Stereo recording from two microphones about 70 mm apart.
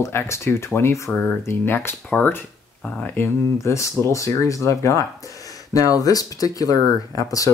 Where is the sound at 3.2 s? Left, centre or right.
Left.